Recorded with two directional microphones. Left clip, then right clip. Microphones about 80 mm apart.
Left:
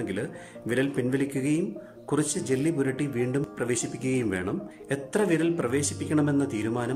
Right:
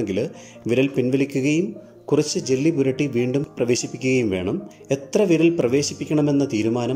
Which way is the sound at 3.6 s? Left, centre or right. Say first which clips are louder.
Right 8 dB; right.